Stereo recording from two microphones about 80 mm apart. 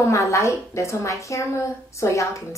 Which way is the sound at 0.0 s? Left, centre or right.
Left.